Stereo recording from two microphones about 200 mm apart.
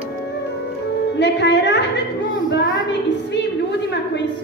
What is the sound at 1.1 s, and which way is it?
Speech, 60° left (ahead or behind).